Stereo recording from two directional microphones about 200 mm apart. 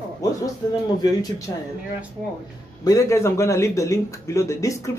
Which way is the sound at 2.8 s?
15° left (ahead or behind).